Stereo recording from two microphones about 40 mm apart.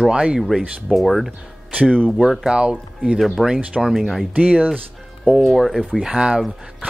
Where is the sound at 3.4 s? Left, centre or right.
Centre.